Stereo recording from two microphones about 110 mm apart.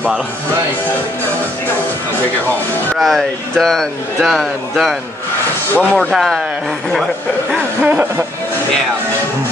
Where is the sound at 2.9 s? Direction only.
5° left (ahead or behind).